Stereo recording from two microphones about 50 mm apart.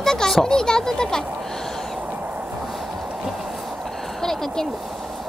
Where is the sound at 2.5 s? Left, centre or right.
Centre.